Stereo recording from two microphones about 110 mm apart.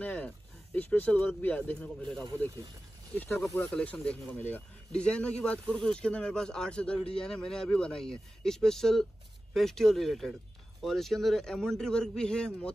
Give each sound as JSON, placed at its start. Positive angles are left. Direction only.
{"t": 0.0, "sound": "a man's voice", "side_deg": 15}